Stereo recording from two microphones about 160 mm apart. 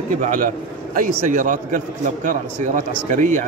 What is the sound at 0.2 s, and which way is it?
A man's voice, 55° right (ahead or behind).